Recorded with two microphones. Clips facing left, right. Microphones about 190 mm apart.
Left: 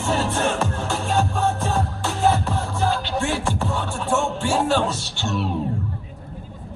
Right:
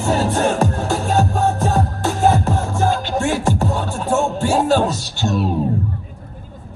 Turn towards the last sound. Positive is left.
turn(degrees=-40)  # may be behind; listen again after turning